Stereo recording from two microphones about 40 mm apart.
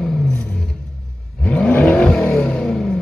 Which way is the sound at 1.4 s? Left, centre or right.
Left.